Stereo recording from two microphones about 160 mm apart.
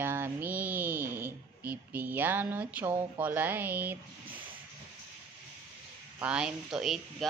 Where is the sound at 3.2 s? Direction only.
10° right (ahead or behind).